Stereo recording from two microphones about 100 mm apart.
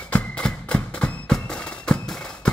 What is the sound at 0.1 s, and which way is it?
Music, 10° left (ahead or behind).